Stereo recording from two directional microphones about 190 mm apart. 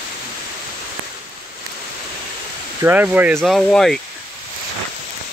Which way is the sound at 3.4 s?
Centre (ahead or behind).